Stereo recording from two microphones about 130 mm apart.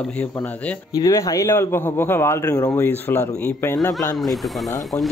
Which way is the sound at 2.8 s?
15° left (ahead or behind).